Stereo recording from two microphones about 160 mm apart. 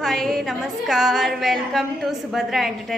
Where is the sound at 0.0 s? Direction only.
Centre (ahead or behind).